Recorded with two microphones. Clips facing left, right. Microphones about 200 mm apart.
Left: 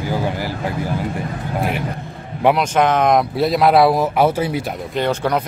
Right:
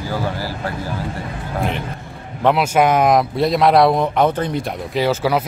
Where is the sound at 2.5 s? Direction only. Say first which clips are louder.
Right 1 dB; 10° right (ahead or behind).